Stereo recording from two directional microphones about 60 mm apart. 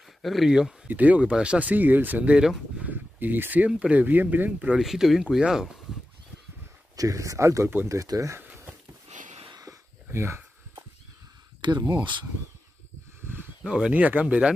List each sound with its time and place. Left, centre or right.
0.2 s speech: centre
0.8 s speech: right
2.3 s speech: centre
2.9 s a sound: right
3.6 s speech: right
4.7 s speech: centre
7.0 s speech: right
10.1 s speech: right
13.7 s speech: centre